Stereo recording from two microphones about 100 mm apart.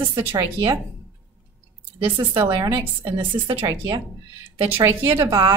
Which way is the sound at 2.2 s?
55° right (ahead or behind).